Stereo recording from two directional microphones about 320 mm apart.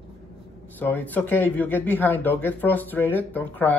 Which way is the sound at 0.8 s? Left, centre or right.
Centre.